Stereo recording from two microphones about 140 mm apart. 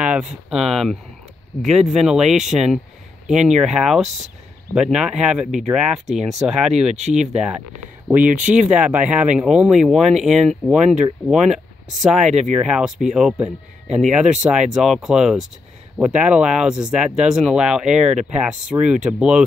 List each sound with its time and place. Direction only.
0.0 s a sound: 10° right (ahead or behind)
0.5 s speech: centre (ahead or behind)
12.3 s speech: 55° right (ahead or behind)
12.5 s speech: 5° right (ahead or behind)